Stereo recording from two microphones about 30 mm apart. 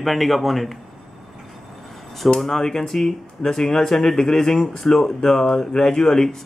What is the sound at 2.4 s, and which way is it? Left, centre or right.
Speech, centre.